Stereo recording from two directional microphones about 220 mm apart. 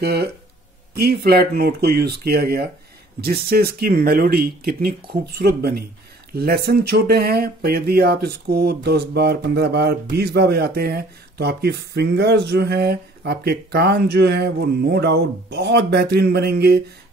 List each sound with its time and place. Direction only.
0.0 s speech: 45° right (ahead or behind)